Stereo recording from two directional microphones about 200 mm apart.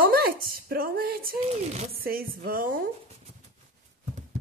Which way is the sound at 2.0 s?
50° right (ahead or behind).